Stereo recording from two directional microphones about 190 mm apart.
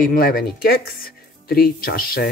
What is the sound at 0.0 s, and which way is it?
Speech, 50° left (ahead or behind).